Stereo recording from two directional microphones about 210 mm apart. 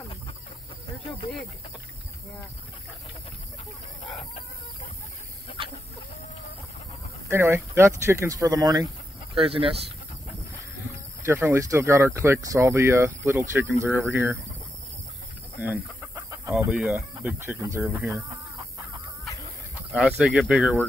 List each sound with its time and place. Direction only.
7.2 s speech: 10° right (ahead or behind)
11.2 s speech: 10° right (ahead or behind)
15.6 s chicken: 10° right (ahead or behind)
17.2 s speech: 5° right (ahead or behind)
19.9 s speech: 5° right (ahead or behind)